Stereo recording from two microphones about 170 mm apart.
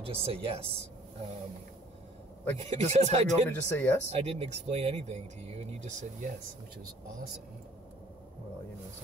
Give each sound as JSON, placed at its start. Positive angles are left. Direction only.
{"t": 0.0, "sound": "speech", "side_deg": -35}
{"t": 2.5, "sound": "speech", "side_deg": -40}
{"t": 3.4, "sound": "speech", "side_deg": 10}
{"t": 4.1, "sound": "speech", "side_deg": -40}